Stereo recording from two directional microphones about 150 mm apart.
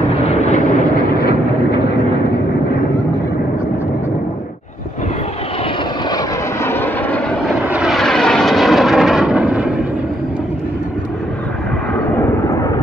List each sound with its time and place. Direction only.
0.3 s vehicle: 50° left (ahead or behind)
6.0 s vehicle: 20° left (ahead or behind); by 7.6 s 5° left (ahead or behind)
7.6 s aircraft: 5° right (ahead or behind)
12.2 s vehicle: 20° left (ahead or behind)